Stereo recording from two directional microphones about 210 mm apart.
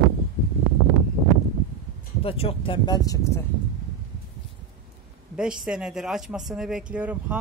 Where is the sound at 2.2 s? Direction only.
25° left (ahead or behind).